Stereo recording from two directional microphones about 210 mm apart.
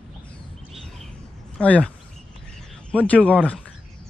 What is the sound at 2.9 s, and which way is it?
Speech, 5° left (ahead or behind).